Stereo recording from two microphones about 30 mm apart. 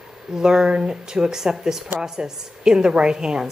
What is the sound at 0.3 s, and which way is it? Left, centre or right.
A woman's voice, centre.